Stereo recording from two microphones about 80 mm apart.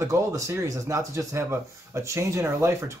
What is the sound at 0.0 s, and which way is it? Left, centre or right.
Speech, right.